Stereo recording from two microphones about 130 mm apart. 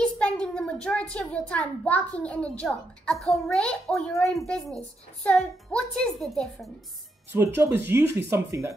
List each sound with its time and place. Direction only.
0.0 s a child's voice: 5° left (ahead or behind)
7.3 s speech: 20° right (ahead or behind)